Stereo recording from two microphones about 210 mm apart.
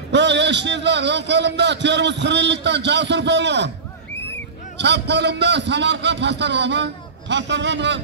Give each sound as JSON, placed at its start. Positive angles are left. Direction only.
{"t": 0.1, "sound": "a man's voice", "side_deg": -55}
{"t": 4.7, "sound": "a man's voice", "side_deg": -55}